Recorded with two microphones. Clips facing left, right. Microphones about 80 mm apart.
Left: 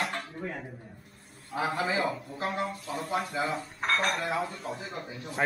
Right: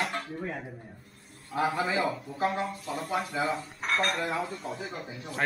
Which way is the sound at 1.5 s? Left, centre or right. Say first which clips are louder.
Right 1 dB; centre.